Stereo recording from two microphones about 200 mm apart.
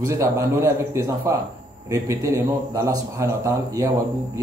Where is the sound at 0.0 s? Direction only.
15° right (ahead or behind).